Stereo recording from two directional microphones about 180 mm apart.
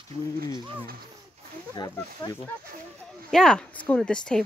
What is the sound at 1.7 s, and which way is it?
Speech, 20° left (ahead or behind).